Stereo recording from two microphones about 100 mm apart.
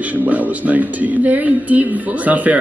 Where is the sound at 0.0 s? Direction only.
15° right (ahead or behind).